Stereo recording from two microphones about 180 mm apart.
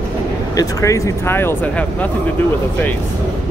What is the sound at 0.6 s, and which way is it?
Speech, 20° left (ahead or behind).